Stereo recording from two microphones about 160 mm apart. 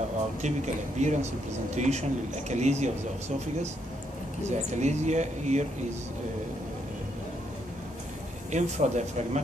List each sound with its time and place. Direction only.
0.4 s speech: 45° right (ahead or behind)
4.5 s speech: 45° right (ahead or behind)
8.5 s speech: 50° right (ahead or behind)